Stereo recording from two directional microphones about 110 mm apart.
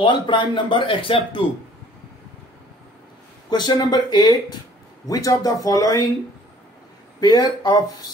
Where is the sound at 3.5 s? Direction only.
40° left (ahead or behind).